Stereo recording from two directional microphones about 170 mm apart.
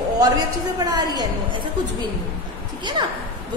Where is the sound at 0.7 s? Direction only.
25° right (ahead or behind).